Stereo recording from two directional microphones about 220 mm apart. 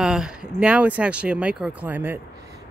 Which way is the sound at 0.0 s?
5° right (ahead or behind).